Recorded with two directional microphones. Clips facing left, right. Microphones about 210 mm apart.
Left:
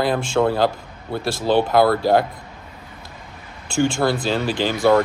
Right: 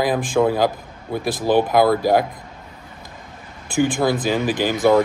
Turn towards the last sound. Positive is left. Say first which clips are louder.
# right 1 dB
turn(degrees=-15)  # may be behind; listen again after turning